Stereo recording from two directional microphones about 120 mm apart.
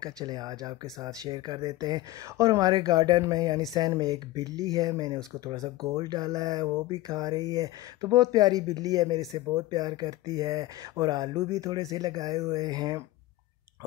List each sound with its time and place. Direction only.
0.0 s speech: 35° right (ahead or behind)